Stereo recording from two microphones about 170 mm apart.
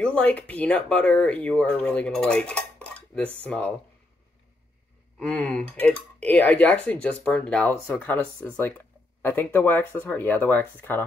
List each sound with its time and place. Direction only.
0.0 s speech: 5° left (ahead or behind)
5.2 s speech: 5° left (ahead or behind)